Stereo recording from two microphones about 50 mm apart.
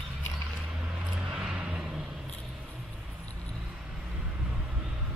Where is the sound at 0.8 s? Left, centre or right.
Centre.